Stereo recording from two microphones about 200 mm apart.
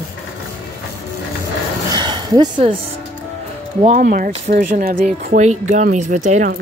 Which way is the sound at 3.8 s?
40° right (ahead or behind).